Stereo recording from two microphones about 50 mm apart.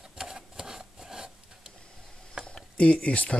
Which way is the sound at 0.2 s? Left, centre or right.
Centre.